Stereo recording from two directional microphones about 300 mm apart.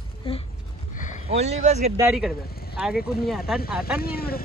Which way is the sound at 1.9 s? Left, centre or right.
Centre.